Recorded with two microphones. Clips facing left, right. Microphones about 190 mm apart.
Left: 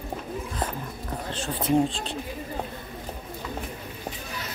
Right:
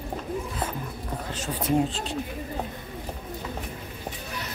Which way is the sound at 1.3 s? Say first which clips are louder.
Left 1 dB; 10° right (ahead or behind).